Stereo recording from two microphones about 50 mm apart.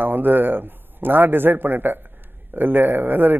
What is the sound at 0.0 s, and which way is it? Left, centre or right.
A man's voice, right.